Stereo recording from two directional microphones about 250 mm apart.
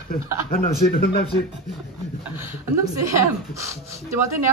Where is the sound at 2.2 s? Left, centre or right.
Centre.